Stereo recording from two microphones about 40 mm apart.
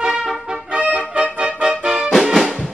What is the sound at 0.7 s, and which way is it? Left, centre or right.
Music, right.